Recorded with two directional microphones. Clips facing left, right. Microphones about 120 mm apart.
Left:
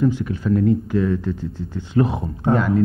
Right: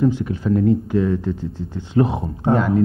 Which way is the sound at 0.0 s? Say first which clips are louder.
Right 1 dB; 25° right (ahead or behind).